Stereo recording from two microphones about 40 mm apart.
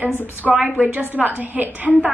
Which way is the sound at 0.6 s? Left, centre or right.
Right.